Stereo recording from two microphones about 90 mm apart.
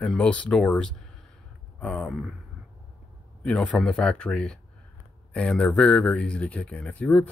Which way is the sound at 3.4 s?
10° left (ahead or behind).